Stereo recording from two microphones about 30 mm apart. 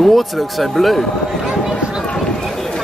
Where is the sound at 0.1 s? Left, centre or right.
Centre.